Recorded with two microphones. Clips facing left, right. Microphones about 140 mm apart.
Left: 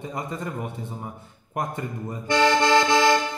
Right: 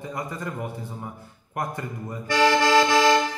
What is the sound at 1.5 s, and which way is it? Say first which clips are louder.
Speech: left 1 dB; 20° left (ahead or behind).